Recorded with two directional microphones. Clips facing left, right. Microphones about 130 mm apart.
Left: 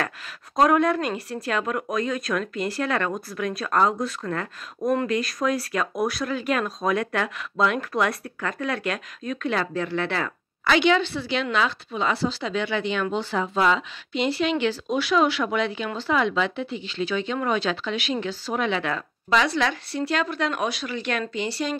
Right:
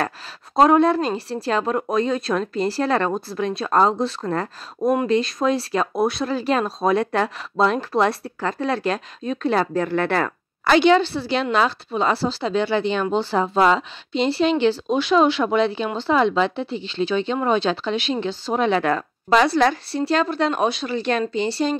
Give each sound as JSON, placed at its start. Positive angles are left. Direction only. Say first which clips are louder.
{"t": 0.6, "sound": "speech", "louder": "right 4 dB", "side_deg": -30}
{"t": 18.7, "sound": "speech", "louder": "right 6 dB", "side_deg": -45}